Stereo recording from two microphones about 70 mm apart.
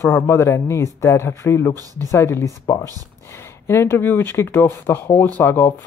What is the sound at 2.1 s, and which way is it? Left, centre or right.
Speech, left.